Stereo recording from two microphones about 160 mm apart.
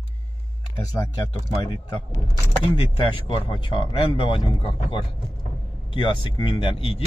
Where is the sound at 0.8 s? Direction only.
25° left (ahead or behind).